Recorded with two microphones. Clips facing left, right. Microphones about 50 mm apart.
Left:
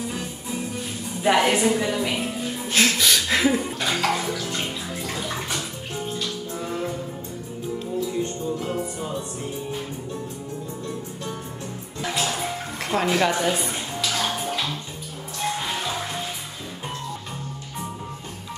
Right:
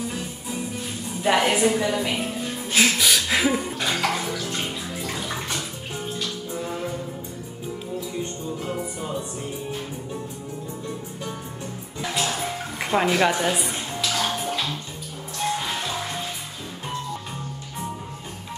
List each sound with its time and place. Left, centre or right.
0.1 s music: centre
1.2 s a woman's voice: centre
3.8 s music: centre
4.5 s bathtub: centre
8.5 s music: centre
12.0 s music: centre